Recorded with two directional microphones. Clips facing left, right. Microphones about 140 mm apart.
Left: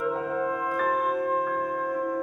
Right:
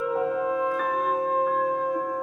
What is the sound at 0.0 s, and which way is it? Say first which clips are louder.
Music: right 2 dB; 20° right (ahead or behind).